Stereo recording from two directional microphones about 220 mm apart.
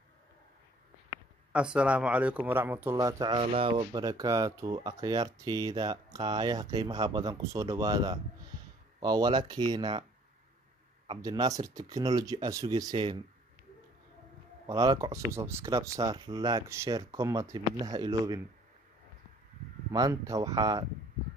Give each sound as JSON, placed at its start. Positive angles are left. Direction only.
{"t": 1.5, "sound": "speech", "side_deg": -5}
{"t": 11.1, "sound": "speech", "side_deg": -20}
{"t": 14.7, "sound": "speech", "side_deg": -15}
{"t": 19.9, "sound": "speech", "side_deg": -15}